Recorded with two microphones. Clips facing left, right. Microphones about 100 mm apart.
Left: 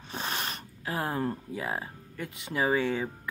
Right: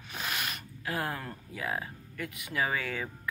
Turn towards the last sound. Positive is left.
turn(degrees=25)  # may be behind; listen again after turning